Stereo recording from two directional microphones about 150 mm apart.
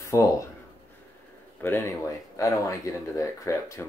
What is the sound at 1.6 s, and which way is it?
Speech, 15° left (ahead or behind).